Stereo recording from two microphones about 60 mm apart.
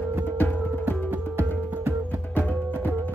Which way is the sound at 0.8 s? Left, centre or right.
Right.